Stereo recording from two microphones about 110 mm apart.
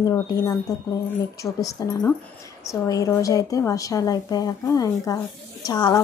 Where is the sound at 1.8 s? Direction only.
30° left (ahead or behind).